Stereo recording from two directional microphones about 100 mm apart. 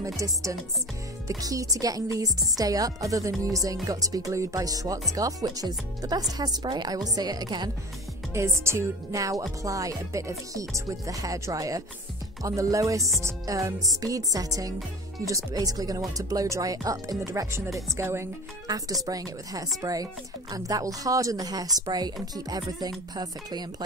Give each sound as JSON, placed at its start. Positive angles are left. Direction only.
{"t": 0.0, "sound": "speech", "side_deg": -35}
{"t": 8.3, "sound": "speech", "side_deg": -25}
{"t": 19.0, "sound": "speech", "side_deg": -35}